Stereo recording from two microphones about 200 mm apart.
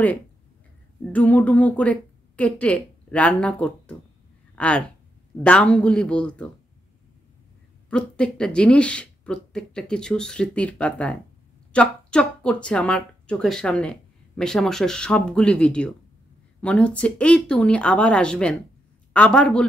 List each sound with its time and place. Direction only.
1.3 s speech: 10° left (ahead or behind)
7.9 s speech: 5° left (ahead or behind)